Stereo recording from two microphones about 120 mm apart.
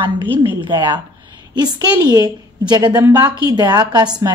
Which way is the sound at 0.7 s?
40° right (ahead or behind).